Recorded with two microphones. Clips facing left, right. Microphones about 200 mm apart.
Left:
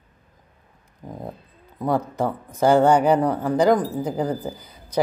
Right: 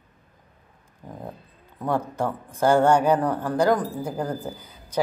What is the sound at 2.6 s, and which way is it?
A woman's voice, 15° left (ahead or behind).